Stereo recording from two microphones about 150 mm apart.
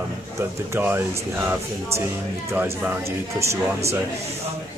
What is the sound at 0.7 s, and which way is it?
Speech, 15° right (ahead or behind).